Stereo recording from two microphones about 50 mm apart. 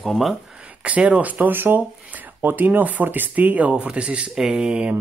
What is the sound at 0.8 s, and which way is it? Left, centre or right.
Speech, right.